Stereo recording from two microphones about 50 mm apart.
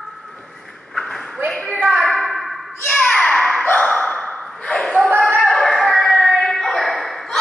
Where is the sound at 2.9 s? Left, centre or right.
Left.